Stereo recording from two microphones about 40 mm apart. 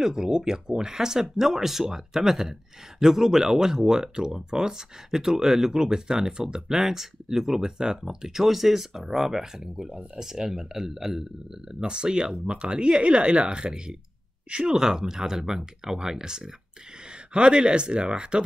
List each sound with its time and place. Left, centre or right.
0.0 s speech: centre
11.8 s speech: right
14.7 s speech: centre